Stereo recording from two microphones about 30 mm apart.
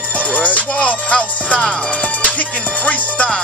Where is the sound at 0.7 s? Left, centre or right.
Left.